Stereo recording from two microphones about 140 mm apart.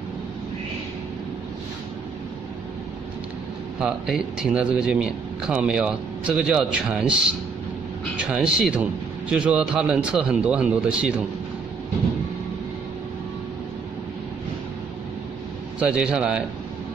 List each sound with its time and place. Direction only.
3.8 s a man's voice: 5° right (ahead or behind)
15.8 s a man's voice: 5° right (ahead or behind)